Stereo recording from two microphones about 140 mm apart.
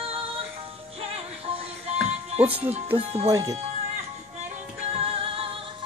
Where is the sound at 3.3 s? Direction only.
25° right (ahead or behind).